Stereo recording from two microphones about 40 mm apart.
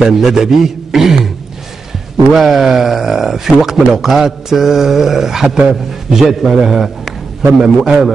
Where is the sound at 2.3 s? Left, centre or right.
Centre.